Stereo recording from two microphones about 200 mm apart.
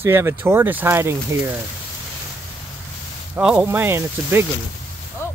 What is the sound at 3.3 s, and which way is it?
Speech, 5° right (ahead or behind).